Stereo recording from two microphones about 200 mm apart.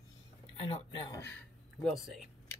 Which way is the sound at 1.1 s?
10° left (ahead or behind).